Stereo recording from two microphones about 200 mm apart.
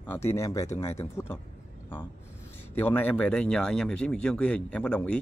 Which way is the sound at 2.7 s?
10° left (ahead or behind).